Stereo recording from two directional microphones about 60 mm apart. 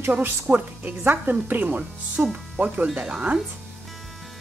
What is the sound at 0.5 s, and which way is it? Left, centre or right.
Speech, right.